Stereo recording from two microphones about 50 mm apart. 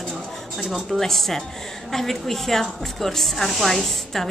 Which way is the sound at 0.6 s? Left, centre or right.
Centre.